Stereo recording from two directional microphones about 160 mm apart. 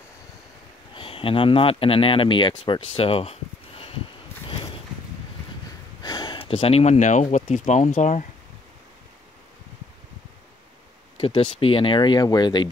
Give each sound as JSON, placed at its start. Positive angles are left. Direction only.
{"t": 0.9, "sound": "speech", "side_deg": 35}
{"t": 4.5, "sound": "a sound", "side_deg": 35}
{"t": 6.0, "sound": "gasp", "side_deg": 25}
{"t": 7.4, "sound": "speech", "side_deg": 45}
{"t": 11.1, "sound": "speech", "side_deg": 35}